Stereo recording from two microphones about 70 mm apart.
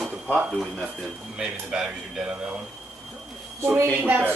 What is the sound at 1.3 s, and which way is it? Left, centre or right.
Speech, centre.